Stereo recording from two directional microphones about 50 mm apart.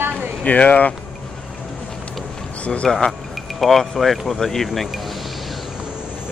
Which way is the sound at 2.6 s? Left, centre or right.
Left.